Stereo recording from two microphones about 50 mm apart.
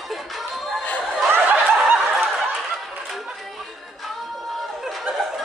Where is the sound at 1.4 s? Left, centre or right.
Right.